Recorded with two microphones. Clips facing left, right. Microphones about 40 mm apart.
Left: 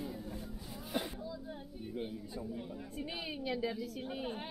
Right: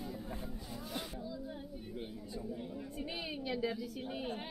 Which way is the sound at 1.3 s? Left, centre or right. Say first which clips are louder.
Right 1 dB; centre.